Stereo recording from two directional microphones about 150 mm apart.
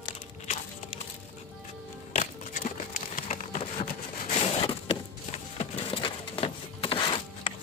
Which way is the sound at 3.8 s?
40° left (ahead or behind).